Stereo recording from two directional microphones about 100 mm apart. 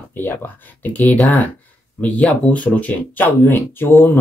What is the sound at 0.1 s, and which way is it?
Speech, 20° left (ahead or behind).